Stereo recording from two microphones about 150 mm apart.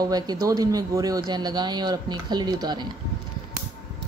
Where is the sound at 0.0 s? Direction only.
25° right (ahead or behind).